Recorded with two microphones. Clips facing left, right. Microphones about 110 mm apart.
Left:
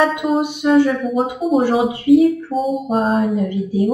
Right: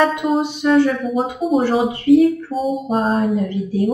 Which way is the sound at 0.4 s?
15° left (ahead or behind).